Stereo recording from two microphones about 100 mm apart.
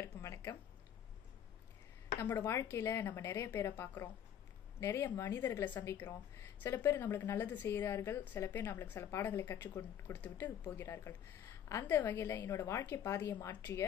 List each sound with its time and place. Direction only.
0.0 s a sound: 25° left (ahead or behind)
2.1 s a woman's voice: 25° left (ahead or behind)
13.6 s a woman's voice: 20° left (ahead or behind)